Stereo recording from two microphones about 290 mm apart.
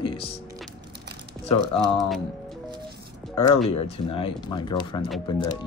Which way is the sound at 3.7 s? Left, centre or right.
Centre.